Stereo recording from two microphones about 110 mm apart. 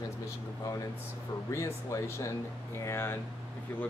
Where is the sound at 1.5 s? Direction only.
25° left (ahead or behind).